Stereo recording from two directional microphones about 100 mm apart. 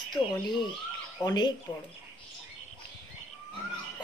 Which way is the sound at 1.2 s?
45° left (ahead or behind).